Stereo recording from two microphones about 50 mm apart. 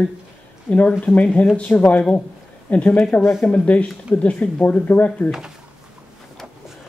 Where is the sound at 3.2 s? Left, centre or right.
Left.